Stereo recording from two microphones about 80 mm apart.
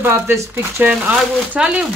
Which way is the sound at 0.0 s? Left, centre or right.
Right.